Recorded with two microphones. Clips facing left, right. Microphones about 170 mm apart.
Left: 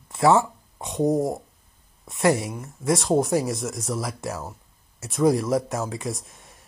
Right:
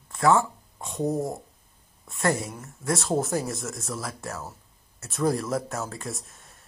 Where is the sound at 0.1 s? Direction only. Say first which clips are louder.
Left 3 dB; 25° left (ahead or behind).